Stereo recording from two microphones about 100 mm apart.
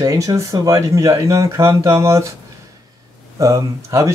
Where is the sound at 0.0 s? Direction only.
35° right (ahead or behind).